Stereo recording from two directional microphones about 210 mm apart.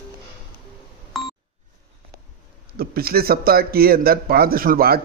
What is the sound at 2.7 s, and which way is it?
Speech, 45° right (ahead or behind).